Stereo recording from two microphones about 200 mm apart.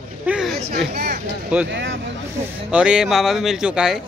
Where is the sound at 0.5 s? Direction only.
50° right (ahead or behind).